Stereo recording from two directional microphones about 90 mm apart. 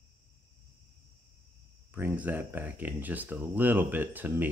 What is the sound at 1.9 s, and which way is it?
Speech, 20° right (ahead or behind).